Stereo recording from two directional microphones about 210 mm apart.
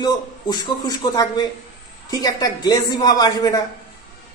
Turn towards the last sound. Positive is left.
turn(degrees=15)  # may be behind; listen again after turning